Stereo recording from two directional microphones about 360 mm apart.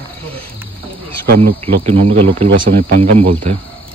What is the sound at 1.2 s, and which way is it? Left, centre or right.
Speech, right.